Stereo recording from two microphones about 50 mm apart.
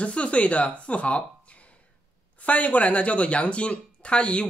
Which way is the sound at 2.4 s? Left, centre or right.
Left.